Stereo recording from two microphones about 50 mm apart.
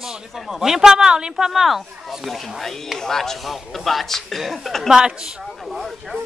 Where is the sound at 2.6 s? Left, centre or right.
Centre.